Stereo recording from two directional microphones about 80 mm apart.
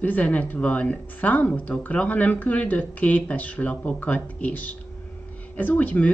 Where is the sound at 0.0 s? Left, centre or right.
Left.